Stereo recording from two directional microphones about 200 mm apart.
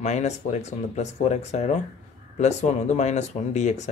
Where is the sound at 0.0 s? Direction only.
35° left (ahead or behind).